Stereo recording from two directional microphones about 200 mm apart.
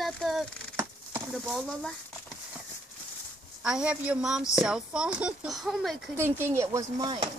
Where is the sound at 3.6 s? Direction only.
5° right (ahead or behind).